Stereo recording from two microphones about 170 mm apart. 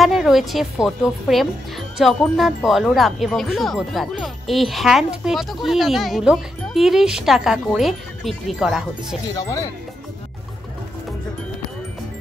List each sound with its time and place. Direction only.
0.0 s a woman's voice: centre (ahead or behind)
9.4 s speech: 20° left (ahead or behind)